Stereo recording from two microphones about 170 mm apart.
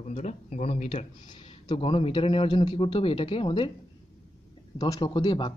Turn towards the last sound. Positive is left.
turn(degrees=25)  # may be behind; listen again after turning